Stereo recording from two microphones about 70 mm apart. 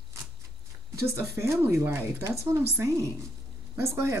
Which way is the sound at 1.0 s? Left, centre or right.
Right.